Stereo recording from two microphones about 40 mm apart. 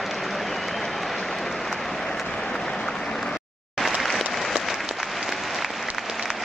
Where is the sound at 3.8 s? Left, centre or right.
Centre.